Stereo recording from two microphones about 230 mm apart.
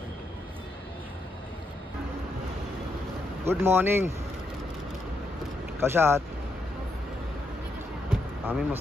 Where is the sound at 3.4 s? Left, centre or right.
Centre.